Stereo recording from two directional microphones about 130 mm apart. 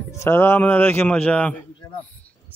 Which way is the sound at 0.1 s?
20° left (ahead or behind).